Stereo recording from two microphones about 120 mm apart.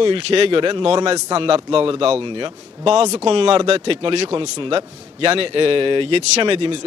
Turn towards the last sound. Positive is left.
turn(degrees=-50)  # may be behind; listen again after turning